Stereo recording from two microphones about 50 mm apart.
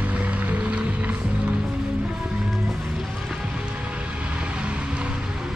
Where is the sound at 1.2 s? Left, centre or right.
Centre.